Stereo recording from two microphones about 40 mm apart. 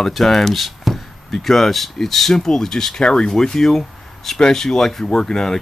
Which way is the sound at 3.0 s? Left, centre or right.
Left.